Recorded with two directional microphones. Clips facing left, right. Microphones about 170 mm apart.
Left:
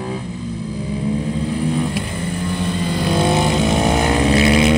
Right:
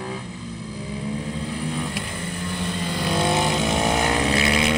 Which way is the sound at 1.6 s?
35° left (ahead or behind).